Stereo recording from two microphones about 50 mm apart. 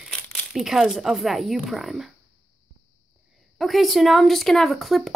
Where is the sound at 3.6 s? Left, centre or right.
Centre.